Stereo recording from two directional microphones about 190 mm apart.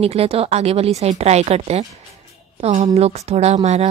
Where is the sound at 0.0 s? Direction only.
30° right (ahead or behind).